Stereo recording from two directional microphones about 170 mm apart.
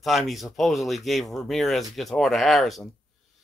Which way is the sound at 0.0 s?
Centre (ahead or behind).